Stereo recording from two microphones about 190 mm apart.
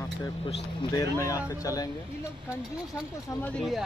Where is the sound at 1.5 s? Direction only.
20° left (ahead or behind).